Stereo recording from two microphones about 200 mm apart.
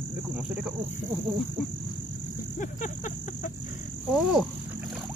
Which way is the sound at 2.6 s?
40° left (ahead or behind).